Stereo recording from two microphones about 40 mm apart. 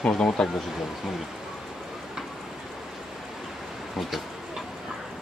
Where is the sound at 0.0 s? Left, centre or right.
Left.